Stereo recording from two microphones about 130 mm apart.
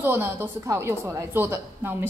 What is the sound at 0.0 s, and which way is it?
A woman's voice, 20° right (ahead or behind).